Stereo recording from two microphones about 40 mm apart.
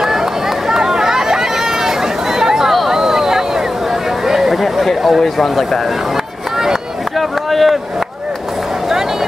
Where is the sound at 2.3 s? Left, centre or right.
Centre.